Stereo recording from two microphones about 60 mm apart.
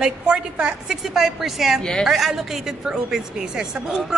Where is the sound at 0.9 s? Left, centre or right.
Centre.